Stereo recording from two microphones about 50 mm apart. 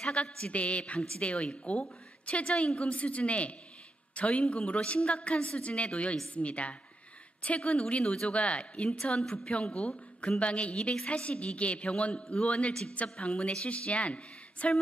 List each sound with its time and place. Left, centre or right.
0.0 s a woman's voice: centre